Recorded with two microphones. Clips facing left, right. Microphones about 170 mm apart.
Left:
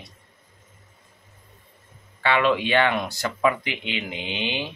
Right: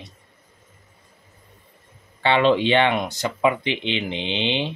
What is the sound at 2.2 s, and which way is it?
Speech, 30° right (ahead or behind).